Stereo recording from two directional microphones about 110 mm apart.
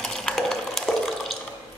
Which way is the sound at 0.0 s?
5° left (ahead or behind).